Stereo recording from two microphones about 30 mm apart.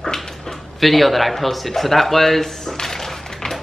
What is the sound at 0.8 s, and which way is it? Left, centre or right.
Speech, centre.